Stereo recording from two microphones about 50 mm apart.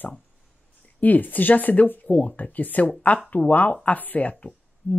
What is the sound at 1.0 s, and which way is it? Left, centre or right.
Speech, left.